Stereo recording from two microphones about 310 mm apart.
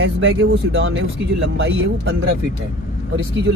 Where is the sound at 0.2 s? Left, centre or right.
Right.